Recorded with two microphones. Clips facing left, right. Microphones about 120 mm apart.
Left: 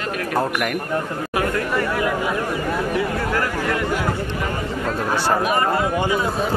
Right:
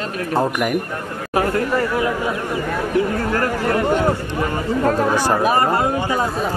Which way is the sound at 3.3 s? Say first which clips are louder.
Right 5 dB; 40° right (ahead or behind).